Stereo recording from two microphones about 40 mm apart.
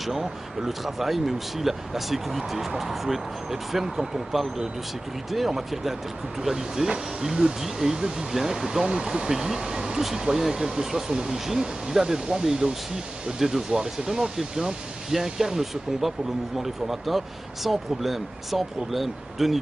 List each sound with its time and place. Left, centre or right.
0.0 s speech: centre
3.7 s speech: centre